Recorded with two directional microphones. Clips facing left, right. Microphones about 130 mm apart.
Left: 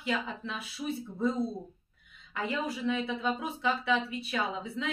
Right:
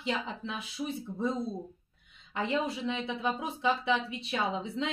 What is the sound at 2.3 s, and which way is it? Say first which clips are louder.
A woman's voice: right 2 dB; 25° right (ahead or behind).